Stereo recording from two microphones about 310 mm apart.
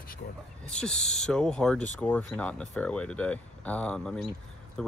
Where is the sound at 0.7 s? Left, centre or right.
Centre.